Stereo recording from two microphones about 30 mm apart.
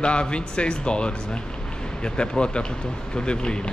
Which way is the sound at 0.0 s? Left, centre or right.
Left.